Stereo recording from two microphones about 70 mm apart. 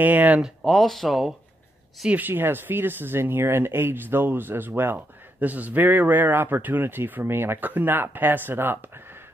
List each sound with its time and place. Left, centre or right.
0.0 s speech: right
0.7 s speech: centre
2.0 s speech: right